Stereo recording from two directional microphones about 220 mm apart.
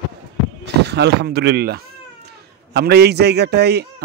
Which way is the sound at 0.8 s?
50° right (ahead or behind).